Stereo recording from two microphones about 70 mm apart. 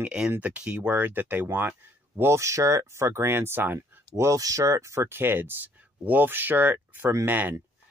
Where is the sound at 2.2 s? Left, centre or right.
Right.